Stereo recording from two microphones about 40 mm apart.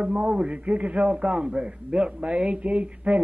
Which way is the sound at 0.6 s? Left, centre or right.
Right.